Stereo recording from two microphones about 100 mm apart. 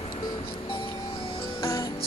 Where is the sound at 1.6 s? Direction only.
35° left (ahead or behind).